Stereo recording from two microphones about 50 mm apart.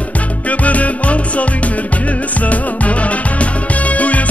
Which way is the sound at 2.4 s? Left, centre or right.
Left.